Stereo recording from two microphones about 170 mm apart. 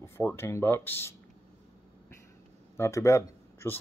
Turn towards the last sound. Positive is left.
turn(degrees=15)  # may be behind; listen again after turning